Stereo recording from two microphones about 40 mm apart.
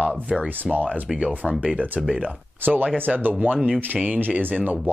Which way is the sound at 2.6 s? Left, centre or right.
Right.